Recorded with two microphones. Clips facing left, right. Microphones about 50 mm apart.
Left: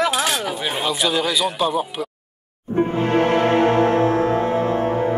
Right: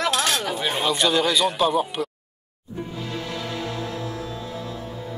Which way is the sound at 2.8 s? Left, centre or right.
Left.